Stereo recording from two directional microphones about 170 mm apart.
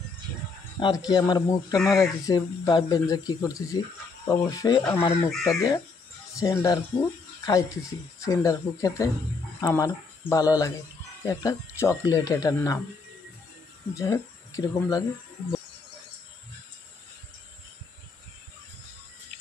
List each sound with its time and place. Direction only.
0.7 s speech: 25° left (ahead or behind)
13.9 s speech: 15° left (ahead or behind)